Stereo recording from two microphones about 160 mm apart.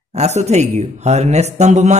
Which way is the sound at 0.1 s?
45° right (ahead or behind).